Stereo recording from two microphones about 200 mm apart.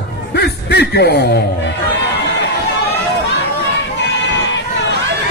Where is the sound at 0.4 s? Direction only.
55° left (ahead or behind).